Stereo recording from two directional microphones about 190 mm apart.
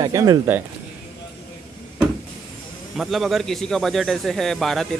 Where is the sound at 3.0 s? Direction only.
Centre (ahead or behind).